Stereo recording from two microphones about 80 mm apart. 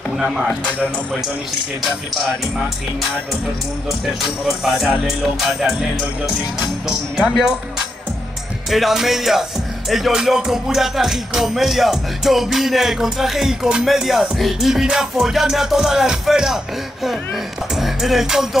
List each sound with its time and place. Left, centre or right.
0.2 s music: centre
0.7 s speech: centre
1.8 s music: centre
4.2 s music: centre
8.6 s music: centre
17.7 s music: centre